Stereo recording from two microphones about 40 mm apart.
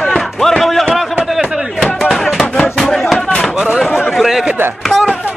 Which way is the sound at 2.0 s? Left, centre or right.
Centre.